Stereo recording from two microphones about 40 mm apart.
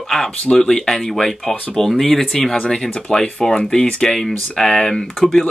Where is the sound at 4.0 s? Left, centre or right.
Centre.